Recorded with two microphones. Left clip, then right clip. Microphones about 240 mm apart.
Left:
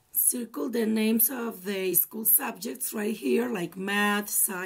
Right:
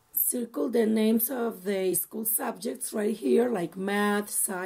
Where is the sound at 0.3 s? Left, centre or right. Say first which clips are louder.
Right 3 dB; centre.